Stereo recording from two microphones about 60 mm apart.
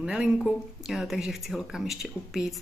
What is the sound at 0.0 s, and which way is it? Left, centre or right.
Speech, right.